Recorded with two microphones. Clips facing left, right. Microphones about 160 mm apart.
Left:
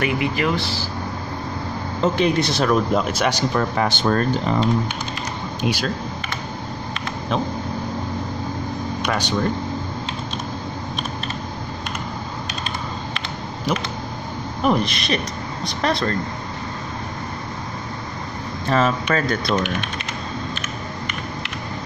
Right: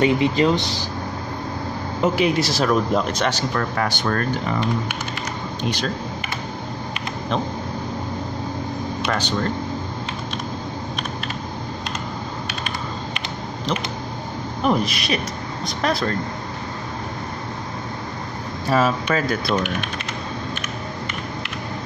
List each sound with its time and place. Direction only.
0.0 s speech: 25° right (ahead or behind)
2.0 s speech: 10° right (ahead or behind); by 4.6 s 25° left (ahead or behind)
5.6 s speech: 5° left (ahead or behind)
9.0 s speech: 15° left (ahead or behind)
14.6 s speech: centre (ahead or behind)
18.7 s speech: 10° right (ahead or behind)